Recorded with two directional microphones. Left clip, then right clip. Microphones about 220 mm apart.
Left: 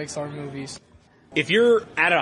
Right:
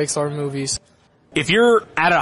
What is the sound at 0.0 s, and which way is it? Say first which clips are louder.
A man's voice: right 9 dB; 55° right (ahead or behind).